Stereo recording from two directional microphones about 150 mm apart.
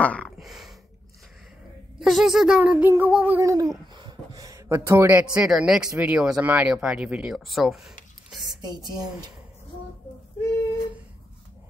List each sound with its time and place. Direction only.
0.0 s speech: 10° left (ahead or behind)
0.4 s a sound: centre (ahead or behind)
2.0 s speech: centre (ahead or behind)
3.3 s a woman's voice: 20° right (ahead or behind); by 8.5 s centre (ahead or behind)
8.5 s speech: 30° right (ahead or behind)